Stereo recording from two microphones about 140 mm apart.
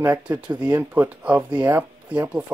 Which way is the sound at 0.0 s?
15° right (ahead or behind).